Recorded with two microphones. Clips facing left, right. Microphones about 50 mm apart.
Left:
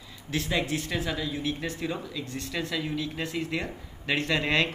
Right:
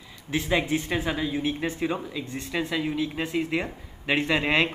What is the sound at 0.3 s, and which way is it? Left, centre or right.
Speech, centre.